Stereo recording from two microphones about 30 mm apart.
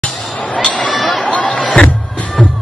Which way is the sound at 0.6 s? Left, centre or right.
Left.